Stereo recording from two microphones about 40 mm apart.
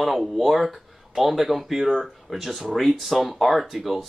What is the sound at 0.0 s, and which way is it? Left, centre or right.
Speech, centre.